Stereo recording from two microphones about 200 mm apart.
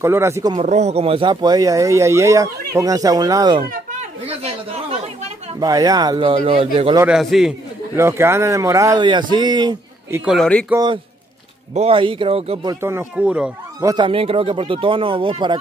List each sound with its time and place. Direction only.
0.0 s speech: 15° right (ahead or behind)
0.6 s speech: 35° right (ahead or behind)
4.3 s chatter: 30° right (ahead or behind)
5.6 s speech: 20° right (ahead or behind)
7.1 s a man's voice: centre (ahead or behind)
7.9 s speech: 15° right (ahead or behind)
10.2 s a man's voice: centre (ahead or behind)
10.7 s speech: 20° right (ahead or behind)
12.8 s speech: 10° right (ahead or behind)
13.8 s speech: 25° right (ahead or behind)